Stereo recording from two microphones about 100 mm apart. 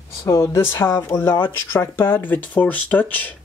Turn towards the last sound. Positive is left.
turn(degrees=15)  # may be behind; listen again after turning